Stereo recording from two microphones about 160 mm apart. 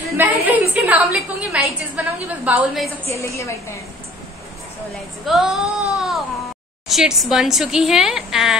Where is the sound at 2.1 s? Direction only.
10° right (ahead or behind).